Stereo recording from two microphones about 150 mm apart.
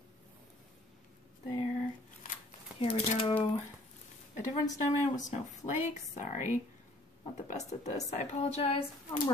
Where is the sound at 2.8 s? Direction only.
40° left (ahead or behind).